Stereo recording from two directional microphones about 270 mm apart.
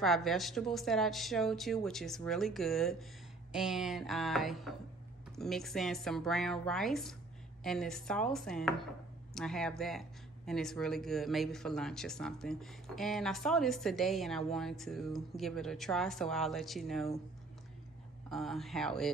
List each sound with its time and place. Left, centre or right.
0.0 s speech: centre
18.3 s speech: centre